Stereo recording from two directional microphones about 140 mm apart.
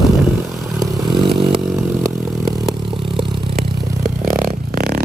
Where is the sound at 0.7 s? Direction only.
35° right (ahead or behind).